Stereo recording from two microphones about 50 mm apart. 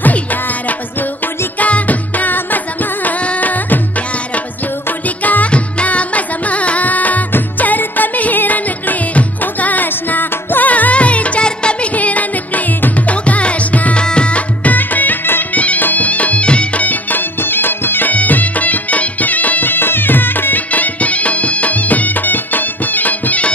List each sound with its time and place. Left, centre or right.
0.0 s music: left
4.8 s music: left
15.5 s music: left